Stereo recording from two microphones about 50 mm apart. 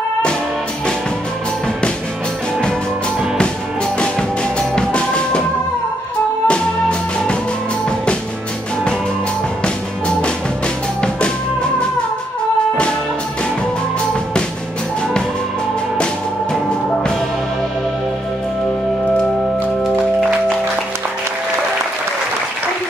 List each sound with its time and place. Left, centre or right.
4.0 s music: centre
6.4 s music: left
11.0 s drum: centre